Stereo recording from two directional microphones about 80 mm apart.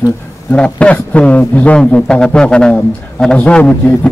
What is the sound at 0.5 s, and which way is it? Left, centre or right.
A man's voice, centre.